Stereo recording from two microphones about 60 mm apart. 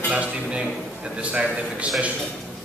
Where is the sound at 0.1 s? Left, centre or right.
Centre.